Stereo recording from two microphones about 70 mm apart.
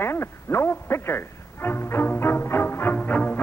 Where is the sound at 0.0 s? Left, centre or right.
Left.